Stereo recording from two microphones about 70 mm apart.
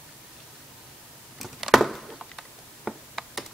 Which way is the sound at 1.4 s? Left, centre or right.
Centre.